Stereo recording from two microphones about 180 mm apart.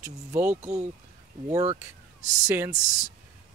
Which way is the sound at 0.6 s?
40° right (ahead or behind).